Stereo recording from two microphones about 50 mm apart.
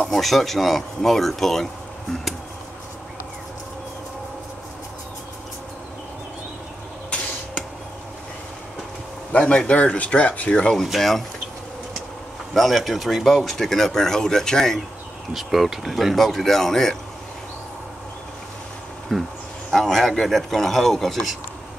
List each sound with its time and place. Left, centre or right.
0.1 s speech: centre
9.5 s speech: left
10.8 s speech: centre
12.5 s speech: centre
15.3 s speech: centre
19.1 s speech: centre